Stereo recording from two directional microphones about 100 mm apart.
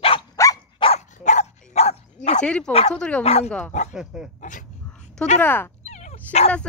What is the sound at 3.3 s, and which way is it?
Speech, 90° left.